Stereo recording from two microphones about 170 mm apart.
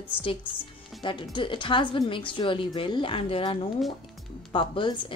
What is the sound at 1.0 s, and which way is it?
A woman's voice, 30° left (ahead or behind).